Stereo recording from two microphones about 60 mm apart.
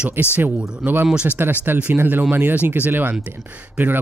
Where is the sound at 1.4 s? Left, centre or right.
Right.